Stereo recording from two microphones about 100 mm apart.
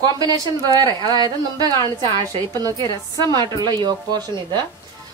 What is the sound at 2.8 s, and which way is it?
Speech, 40° left (ahead or behind).